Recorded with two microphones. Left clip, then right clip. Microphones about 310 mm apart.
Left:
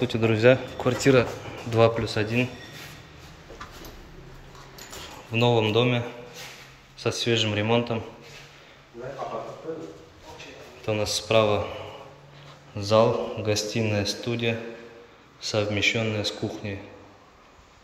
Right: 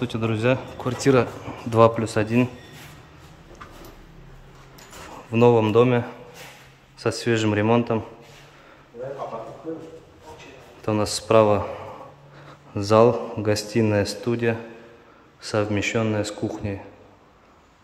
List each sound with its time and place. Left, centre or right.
0.0 s speech: centre
5.3 s speech: centre
10.9 s speech: centre
12.7 s speech: centre